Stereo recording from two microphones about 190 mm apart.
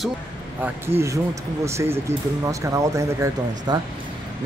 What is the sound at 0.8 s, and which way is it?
Speech, 15° right (ahead or behind).